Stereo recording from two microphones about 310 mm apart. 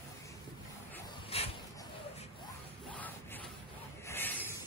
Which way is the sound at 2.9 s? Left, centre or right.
Centre.